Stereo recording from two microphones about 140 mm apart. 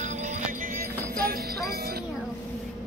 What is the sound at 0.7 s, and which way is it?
Jingle bell, 90° right.